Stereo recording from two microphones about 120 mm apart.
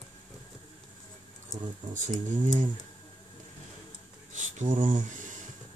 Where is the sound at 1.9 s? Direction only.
90° right.